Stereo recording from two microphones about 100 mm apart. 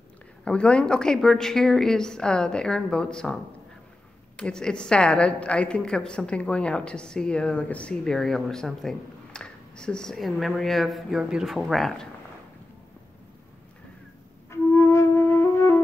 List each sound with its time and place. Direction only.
0.5 s a woman's voice: 10° left (ahead or behind)
4.4 s a woman's voice: 10° left (ahead or behind)
14.5 s flute: 25° left (ahead or behind)